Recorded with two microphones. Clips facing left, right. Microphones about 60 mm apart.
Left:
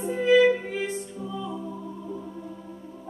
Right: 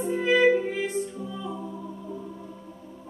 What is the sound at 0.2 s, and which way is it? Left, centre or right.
Music, centre.